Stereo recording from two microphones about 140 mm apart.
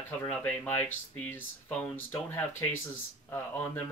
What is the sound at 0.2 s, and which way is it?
Speech, 10° left (ahead or behind).